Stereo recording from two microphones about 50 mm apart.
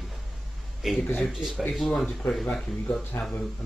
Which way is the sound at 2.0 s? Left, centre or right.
Centre.